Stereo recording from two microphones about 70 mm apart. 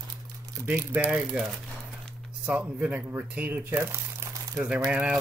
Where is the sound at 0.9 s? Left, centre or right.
Centre.